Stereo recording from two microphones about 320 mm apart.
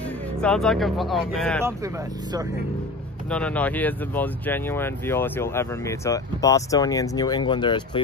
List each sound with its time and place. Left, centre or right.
0.0 s speech: centre
1.6 s speech: centre
3.3 s speech: centre